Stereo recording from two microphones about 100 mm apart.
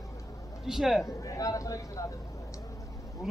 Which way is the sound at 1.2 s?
35° left (ahead or behind).